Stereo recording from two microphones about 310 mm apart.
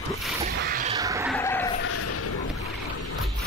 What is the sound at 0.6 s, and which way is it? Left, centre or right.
Music, right.